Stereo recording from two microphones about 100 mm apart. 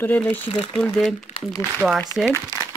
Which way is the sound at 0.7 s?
Centre (ahead or behind).